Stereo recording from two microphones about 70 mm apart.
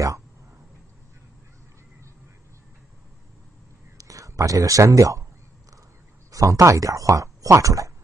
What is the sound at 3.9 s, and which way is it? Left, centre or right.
Speech, right.